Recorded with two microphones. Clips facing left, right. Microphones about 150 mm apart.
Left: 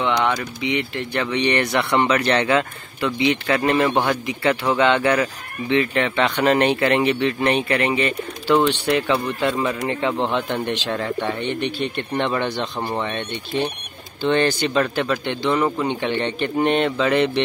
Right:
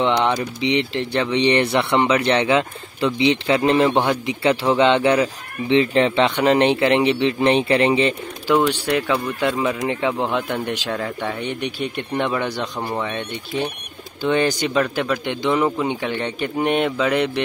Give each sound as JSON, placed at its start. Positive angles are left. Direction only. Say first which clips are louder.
{"t": 0.0, "sound": "speech", "louder": "right 2 dB", "side_deg": -25}
{"t": 2.0, "sound": "speech", "louder": "right 1 dB", "side_deg": -15}
{"t": 8.5, "sound": "a man's voice", "louder": "even", "side_deg": -10}
{"t": 15.2, "sound": "a man's voice", "louder": "right 2 dB", "side_deg": -15}